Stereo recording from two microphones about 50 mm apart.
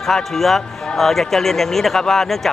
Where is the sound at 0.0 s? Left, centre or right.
Centre.